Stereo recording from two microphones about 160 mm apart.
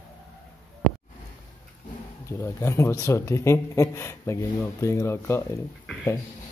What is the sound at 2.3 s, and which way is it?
Speech, 15° left (ahead or behind).